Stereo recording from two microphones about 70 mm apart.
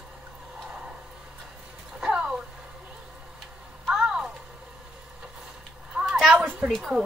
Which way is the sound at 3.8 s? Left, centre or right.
Centre.